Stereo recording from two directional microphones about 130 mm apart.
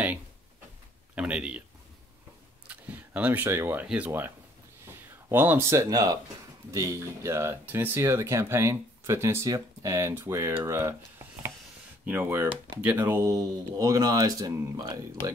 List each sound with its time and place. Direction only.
1.1 s speech: 10° right (ahead or behind)
2.7 s speech: 10° right (ahead or behind)
5.3 s speech: 15° right (ahead or behind)